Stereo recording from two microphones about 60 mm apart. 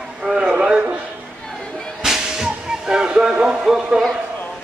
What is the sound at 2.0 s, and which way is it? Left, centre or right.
Whip, centre.